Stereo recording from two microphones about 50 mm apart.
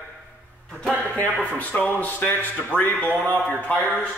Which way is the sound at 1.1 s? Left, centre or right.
Left.